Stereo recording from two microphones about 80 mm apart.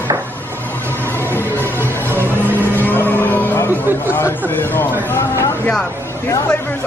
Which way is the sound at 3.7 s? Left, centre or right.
Right.